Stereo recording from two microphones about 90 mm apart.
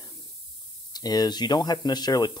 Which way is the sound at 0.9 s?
50° left (ahead or behind).